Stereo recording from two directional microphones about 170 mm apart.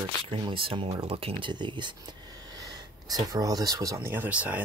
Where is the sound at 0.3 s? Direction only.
30° right (ahead or behind).